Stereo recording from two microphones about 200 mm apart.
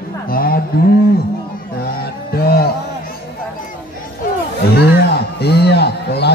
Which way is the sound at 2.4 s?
50° left (ahead or behind).